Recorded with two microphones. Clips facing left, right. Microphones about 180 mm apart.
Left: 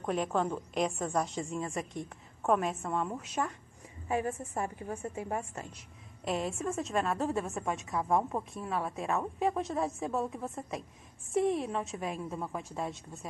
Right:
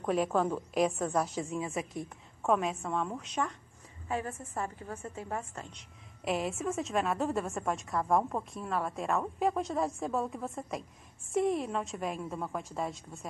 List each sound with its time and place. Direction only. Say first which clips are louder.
0.0 s a woman's voice: right 2 dB; centre (ahead or behind)